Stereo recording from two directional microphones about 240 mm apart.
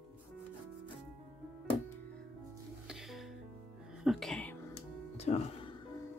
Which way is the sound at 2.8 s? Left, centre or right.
Centre.